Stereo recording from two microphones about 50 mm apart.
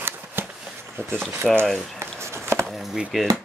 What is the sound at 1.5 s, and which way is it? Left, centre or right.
Speech, centre.